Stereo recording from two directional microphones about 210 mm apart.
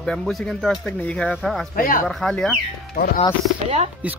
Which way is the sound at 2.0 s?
5° left (ahead or behind).